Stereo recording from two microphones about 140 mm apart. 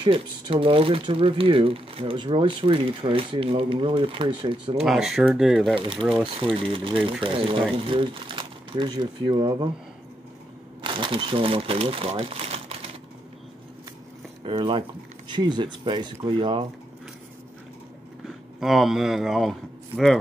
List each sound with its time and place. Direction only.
0.0 s speech: 40° right (ahead or behind)
4.7 s speech: centre (ahead or behind)
6.4 s speech: 40° right (ahead or behind)
10.8 s speech: 35° right (ahead or behind)
14.4 s speech: 40° right (ahead or behind)
18.6 s speech: centre (ahead or behind)